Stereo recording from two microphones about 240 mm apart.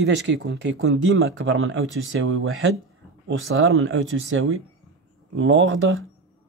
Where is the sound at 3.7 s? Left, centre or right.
Right.